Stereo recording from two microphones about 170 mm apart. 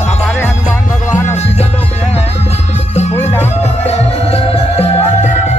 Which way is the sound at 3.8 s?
35° left (ahead or behind).